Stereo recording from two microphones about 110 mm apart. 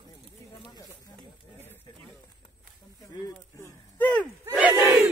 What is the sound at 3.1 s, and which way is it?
Speech, 30° left (ahead or behind).